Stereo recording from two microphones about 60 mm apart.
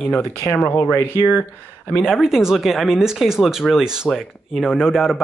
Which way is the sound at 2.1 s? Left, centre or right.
Centre.